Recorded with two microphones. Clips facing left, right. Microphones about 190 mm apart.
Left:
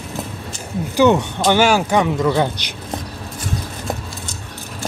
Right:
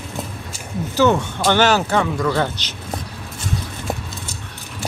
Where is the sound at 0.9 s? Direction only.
15° left (ahead or behind).